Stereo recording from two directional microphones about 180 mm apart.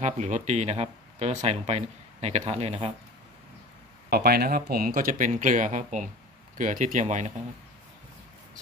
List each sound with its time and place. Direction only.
0.0 s speech: 40° right (ahead or behind)
4.1 s speech: 60° right (ahead or behind); by 7.3 s 40° right (ahead or behind)